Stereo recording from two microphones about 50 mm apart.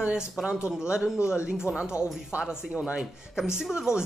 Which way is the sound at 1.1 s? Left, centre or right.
Left.